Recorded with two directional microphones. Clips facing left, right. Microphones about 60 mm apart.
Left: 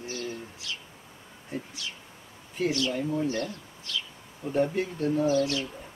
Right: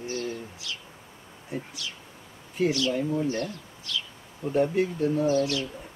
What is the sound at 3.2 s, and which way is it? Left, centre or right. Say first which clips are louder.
Speech: right 1 dB; right.